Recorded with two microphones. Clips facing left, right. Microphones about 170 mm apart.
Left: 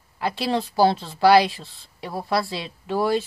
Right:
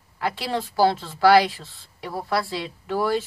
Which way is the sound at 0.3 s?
20° left (ahead or behind).